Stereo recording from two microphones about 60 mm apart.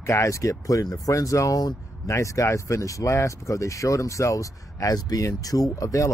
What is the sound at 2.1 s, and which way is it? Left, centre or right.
Speech, left.